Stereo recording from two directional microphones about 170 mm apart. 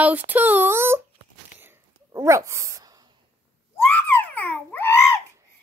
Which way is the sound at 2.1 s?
15° right (ahead or behind).